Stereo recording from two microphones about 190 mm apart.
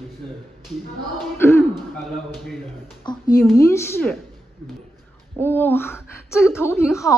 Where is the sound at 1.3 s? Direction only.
10° left (ahead or behind).